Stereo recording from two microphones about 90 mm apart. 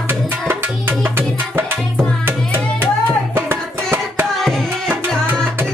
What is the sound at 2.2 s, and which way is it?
Music, 25° right (ahead or behind).